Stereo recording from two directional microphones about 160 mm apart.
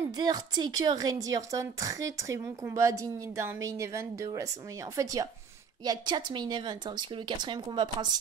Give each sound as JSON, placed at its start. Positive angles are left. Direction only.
{"t": 0.0, "sound": "a woman's voice", "side_deg": -25}